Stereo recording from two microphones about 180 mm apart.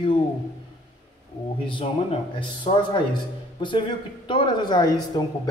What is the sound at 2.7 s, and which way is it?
Speech, 30° left (ahead or behind).